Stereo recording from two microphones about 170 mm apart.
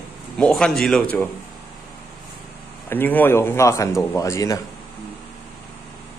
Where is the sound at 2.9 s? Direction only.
10° left (ahead or behind).